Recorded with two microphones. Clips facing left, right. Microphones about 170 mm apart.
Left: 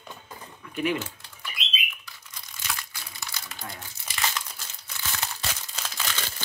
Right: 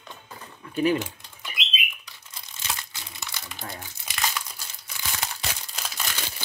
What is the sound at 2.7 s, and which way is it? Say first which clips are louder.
Crumpling: right 1 dB; 25° right (ahead or behind).